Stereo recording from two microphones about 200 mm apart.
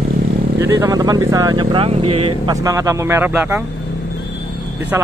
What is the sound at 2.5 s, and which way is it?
Speech, 15° right (ahead or behind).